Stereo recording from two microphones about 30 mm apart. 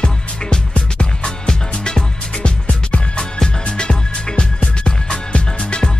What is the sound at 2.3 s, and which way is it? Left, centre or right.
Music, left.